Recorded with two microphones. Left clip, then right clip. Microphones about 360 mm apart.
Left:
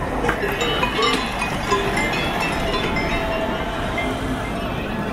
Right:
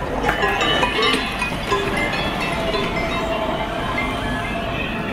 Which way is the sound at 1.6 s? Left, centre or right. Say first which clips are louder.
Left 1 dB; centre.